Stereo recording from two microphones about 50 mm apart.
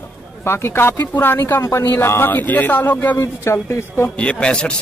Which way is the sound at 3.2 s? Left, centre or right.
Left.